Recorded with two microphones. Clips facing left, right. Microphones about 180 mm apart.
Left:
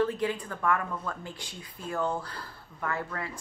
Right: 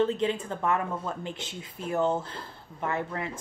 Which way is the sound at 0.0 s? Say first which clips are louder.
Right 2 dB; 25° right (ahead or behind).